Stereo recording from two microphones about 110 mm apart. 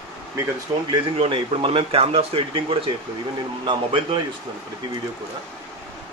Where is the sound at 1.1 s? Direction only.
55° right (ahead or behind).